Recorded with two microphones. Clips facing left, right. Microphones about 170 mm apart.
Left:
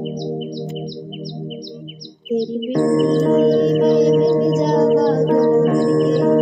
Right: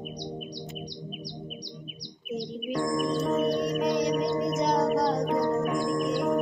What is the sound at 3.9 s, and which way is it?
Music, 55° left (ahead or behind).